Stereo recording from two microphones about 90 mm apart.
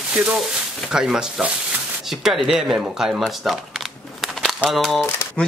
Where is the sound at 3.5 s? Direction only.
Centre (ahead or behind).